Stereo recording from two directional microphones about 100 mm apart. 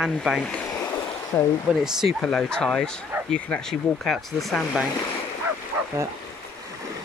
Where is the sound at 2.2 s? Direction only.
5° left (ahead or behind).